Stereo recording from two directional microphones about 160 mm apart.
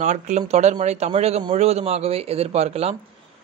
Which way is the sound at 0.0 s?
45° right (ahead or behind).